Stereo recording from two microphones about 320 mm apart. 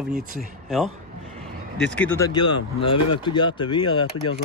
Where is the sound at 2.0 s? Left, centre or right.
Centre.